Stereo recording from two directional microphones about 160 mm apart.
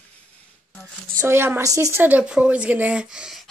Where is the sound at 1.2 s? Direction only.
15° right (ahead or behind).